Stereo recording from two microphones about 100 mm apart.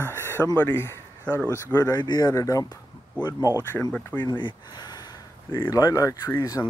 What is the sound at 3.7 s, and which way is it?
Speech, 25° left (ahead or behind).